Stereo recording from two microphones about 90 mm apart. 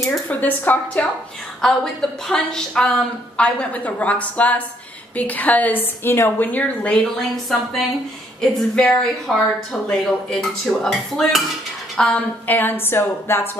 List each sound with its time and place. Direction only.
0.3 s a woman's voice: 20° left (ahead or behind)
1.6 s a woman's voice: 5° left (ahead or behind)
7.2 s a woman's voice: centre (ahead or behind)
12.4 s a woman's voice: 20° left (ahead or behind)